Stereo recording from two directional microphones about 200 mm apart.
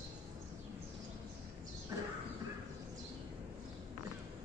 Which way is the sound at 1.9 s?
15° right (ahead or behind).